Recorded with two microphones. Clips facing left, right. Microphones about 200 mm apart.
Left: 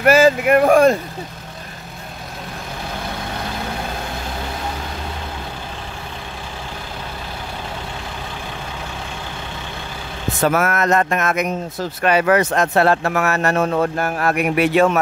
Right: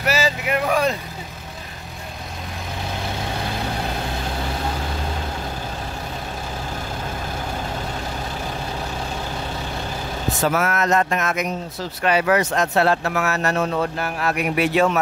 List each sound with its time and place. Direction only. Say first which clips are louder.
0.0 s speech: left 9 dB; 55° left (ahead or behind)
10.4 s speech: left 4 dB; 55° left (ahead or behind)